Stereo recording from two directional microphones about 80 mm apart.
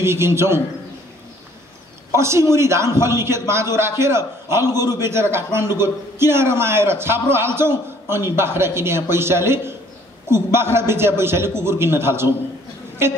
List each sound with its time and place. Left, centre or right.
0.0 s a man's voice: right
2.1 s a man's voice: right